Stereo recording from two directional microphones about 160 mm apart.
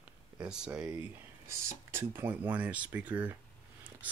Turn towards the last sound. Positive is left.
turn(degrees=-10)  # may be behind; listen again after turning